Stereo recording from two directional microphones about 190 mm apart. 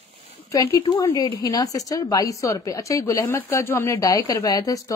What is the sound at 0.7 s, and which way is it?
A woman's voice, 25° left (ahead or behind).